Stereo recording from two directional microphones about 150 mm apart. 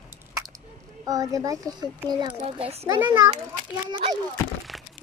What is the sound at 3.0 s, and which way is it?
Speech, 15° right (ahead or behind).